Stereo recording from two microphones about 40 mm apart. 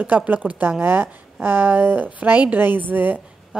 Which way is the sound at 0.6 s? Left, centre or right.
Right.